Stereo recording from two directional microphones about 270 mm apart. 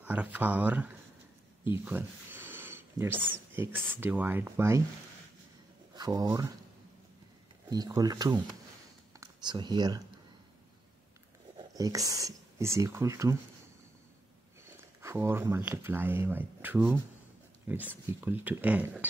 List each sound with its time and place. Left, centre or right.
0.0 s speech: centre
1.9 s a sound: centre
3.2 s speech: centre
5.9 s speech: centre
7.7 s speech: centre
11.5 s speech: centre
15.0 s speech: centre